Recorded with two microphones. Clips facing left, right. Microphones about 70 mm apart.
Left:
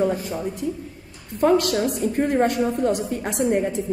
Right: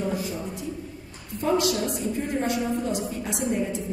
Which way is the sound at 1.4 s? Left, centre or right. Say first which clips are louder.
Left 5 dB; left.